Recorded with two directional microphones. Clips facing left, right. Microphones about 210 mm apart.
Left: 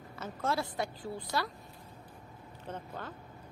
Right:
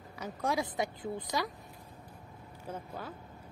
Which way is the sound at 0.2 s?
15° right (ahead or behind).